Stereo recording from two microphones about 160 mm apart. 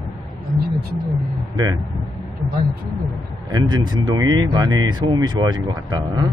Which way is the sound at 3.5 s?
25° right (ahead or behind).